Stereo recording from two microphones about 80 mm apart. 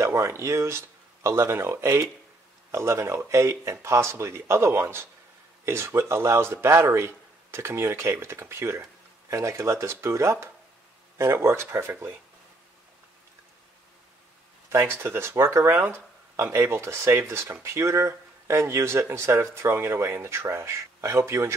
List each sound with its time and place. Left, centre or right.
0.0 s speech: right
14.7 s speech: right